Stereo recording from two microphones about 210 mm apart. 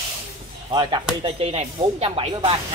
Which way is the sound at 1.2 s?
30° right (ahead or behind).